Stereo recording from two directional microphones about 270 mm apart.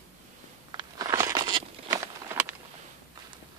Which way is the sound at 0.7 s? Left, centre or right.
Centre.